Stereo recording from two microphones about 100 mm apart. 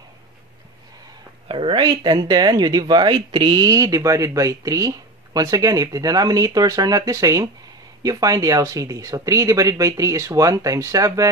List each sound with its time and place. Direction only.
1.5 s speech: 60° right (ahead or behind); by 11.2 s 35° right (ahead or behind)